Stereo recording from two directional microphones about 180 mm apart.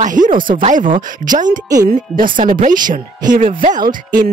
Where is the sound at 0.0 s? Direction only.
45° right (ahead or behind).